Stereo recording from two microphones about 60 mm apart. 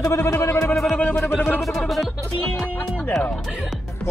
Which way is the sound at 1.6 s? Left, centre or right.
Centre.